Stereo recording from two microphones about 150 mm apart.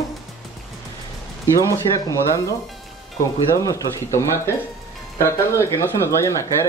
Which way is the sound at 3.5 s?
20° left (ahead or behind).